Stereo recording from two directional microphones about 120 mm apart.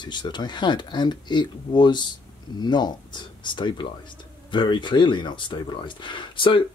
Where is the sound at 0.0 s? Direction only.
40° left (ahead or behind).